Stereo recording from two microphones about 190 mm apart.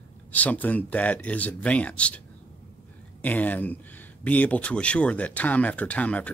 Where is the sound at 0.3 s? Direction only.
10° left (ahead or behind).